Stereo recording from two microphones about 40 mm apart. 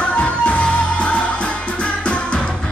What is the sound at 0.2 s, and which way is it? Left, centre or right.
Music, left.